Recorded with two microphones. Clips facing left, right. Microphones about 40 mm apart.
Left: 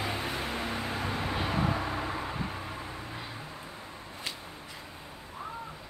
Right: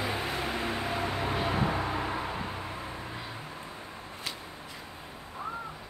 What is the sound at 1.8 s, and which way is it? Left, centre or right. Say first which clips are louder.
Vehicle: right 2 dB; right.